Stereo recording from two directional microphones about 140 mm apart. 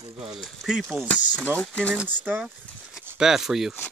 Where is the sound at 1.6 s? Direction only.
5° left (ahead or behind).